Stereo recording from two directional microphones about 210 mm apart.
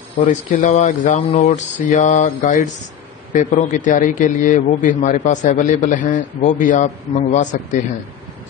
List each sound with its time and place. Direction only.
0.3 s a man's voice: 35° left (ahead or behind)